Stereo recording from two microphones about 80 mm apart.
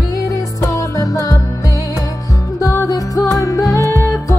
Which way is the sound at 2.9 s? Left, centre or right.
Left.